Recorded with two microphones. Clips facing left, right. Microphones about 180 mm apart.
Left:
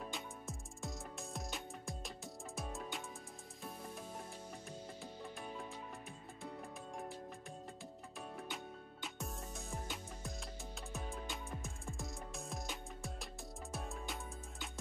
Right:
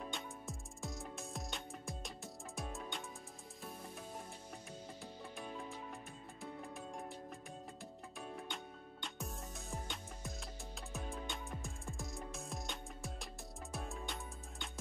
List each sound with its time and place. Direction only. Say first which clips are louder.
0.1 s music: even; centre (ahead or behind)
8.2 s music: even; centre (ahead or behind)